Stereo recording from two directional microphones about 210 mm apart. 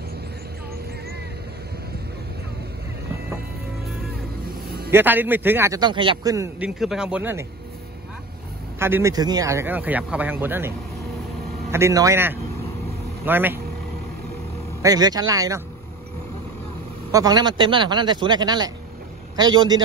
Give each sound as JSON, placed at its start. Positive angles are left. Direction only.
{"t": 4.9, "sound": "speech", "side_deg": -10}
{"t": 6.6, "sound": "speech", "side_deg": -5}
{"t": 8.7, "sound": "speech", "side_deg": -10}
{"t": 11.7, "sound": "speech", "side_deg": -15}
{"t": 14.8, "sound": "speech", "side_deg": -15}
{"t": 17.1, "sound": "speech", "side_deg": -20}